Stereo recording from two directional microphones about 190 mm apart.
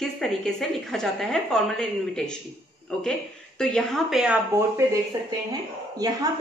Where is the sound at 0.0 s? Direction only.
Centre (ahead or behind).